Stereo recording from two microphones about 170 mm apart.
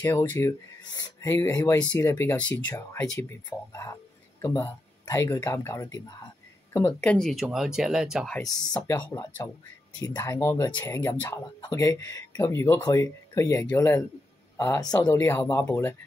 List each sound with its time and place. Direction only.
0.0 s speech: 15° left (ahead or behind); by 8.3 s 5° right (ahead or behind)
8.7 s speech: 25° left (ahead or behind)